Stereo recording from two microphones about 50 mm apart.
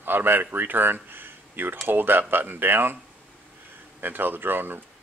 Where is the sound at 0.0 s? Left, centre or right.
Right.